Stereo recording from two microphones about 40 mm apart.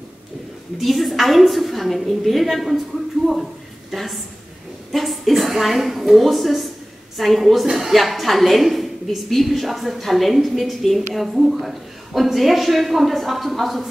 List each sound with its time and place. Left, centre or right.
0.7 s a woman's voice: centre
3.9 s a woman's voice: centre